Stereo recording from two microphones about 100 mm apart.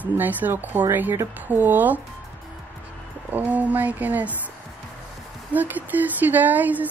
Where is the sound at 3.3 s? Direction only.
15° right (ahead or behind).